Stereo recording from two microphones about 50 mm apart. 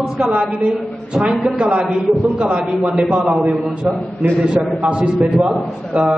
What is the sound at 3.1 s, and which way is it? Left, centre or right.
A man's voice, centre.